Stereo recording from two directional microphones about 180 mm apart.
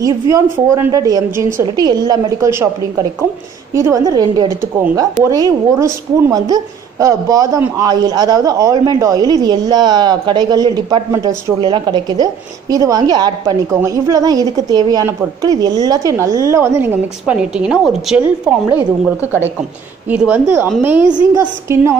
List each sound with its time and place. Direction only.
0.0 s a woman's voice: 20° right (ahead or behind)